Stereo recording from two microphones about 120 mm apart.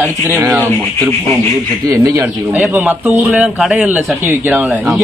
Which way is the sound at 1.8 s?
25° right (ahead or behind).